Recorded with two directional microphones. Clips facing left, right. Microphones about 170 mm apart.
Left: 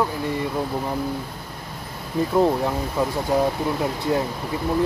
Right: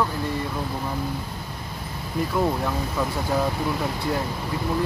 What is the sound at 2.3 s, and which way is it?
Speech, 25° left (ahead or behind).